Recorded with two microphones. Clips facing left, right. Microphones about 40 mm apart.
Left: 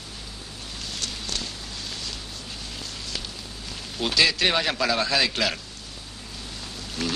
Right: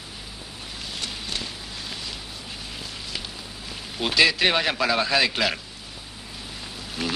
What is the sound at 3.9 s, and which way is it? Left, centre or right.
A man's voice, centre.